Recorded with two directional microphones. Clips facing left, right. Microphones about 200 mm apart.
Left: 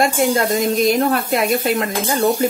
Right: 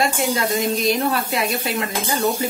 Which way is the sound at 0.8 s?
50° left (ahead or behind).